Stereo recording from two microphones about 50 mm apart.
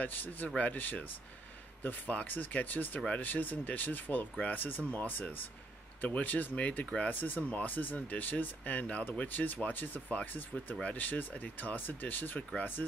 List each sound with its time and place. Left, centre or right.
0.0 s speech: left
11.0 s speech: left